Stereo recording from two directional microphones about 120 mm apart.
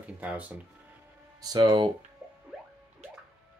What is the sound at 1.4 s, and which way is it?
Speech, 35° right (ahead or behind).